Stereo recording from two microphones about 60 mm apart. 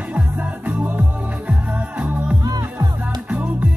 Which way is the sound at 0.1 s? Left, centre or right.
Right.